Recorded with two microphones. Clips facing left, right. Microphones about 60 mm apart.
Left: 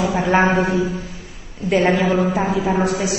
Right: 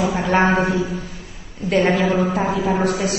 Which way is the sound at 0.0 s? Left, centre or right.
Centre.